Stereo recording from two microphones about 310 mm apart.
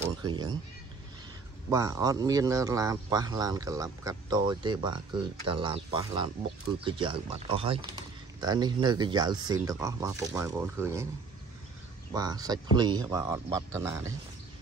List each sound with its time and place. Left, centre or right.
0.0 s speech: centre
1.7 s speech: centre
12.1 s speech: centre